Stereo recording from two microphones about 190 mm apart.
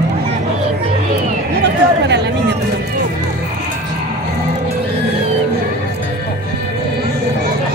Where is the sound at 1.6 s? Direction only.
60° right (ahead or behind).